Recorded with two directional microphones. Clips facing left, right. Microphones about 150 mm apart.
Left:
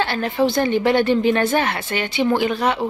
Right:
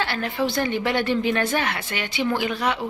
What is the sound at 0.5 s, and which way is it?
A woman's voice, 30° left (ahead or behind).